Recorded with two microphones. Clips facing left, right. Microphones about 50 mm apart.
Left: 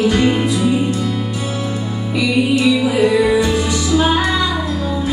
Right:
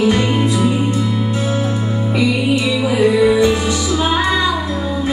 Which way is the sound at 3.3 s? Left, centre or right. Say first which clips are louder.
Right 2 dB; right.